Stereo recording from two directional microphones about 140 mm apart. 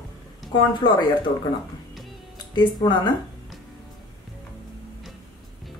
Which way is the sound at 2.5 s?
30° left (ahead or behind).